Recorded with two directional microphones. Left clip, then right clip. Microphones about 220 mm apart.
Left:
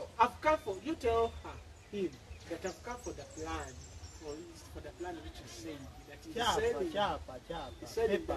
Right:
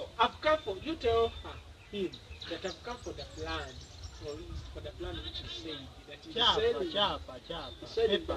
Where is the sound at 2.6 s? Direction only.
10° left (ahead or behind).